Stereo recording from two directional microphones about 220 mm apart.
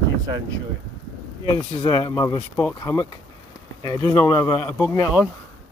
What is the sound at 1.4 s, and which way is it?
Speech, 20° left (ahead or behind).